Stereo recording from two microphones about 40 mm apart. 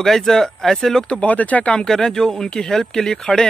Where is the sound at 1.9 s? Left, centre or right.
Centre.